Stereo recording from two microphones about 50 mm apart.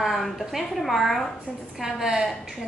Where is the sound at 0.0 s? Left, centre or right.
Centre.